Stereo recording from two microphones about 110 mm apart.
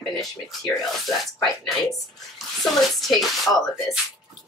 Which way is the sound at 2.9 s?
Centre (ahead or behind).